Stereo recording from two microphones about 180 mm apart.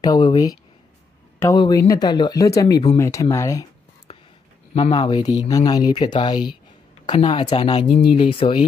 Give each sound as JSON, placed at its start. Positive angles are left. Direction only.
{"t": 0.0, "sound": "speech", "side_deg": 25}
{"t": 4.1, "sound": "a sound", "side_deg": 30}
{"t": 4.7, "sound": "speech", "side_deg": 30}